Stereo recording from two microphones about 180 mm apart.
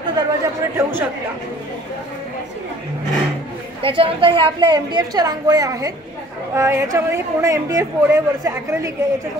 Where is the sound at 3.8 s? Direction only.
30° right (ahead or behind).